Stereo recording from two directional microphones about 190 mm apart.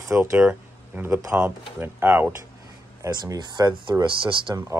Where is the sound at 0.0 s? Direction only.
15° right (ahead or behind).